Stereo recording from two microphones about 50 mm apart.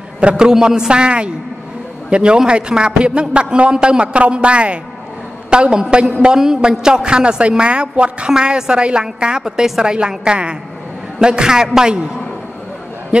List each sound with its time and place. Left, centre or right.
0.2 s a man's voice: centre